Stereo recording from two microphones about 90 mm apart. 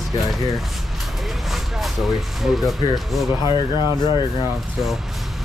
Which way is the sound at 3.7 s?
55° left (ahead or behind).